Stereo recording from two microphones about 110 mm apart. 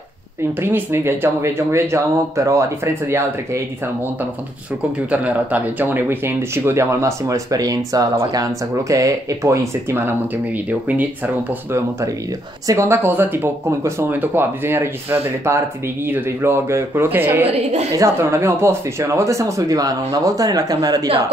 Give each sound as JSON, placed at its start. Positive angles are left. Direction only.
{"t": 0.6, "sound": "speech", "side_deg": -20}
{"t": 5.1, "sound": "speech", "side_deg": -15}
{"t": 12.6, "sound": "speech", "side_deg": -25}